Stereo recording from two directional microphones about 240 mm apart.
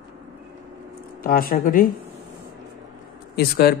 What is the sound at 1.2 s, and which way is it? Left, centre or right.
Speech, left.